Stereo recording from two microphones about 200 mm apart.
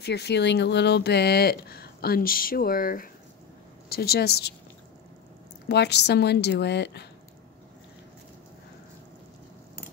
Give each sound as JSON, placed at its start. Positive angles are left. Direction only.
{"t": 0.0, "sound": "speech", "side_deg": 55}
{"t": 5.7, "sound": "a woman's voice", "side_deg": 55}